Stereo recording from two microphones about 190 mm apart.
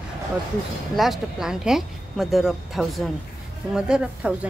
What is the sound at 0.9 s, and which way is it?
A woman's voice, centre (ahead or behind).